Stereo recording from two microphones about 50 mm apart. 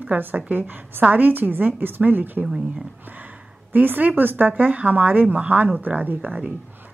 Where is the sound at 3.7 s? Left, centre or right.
Right.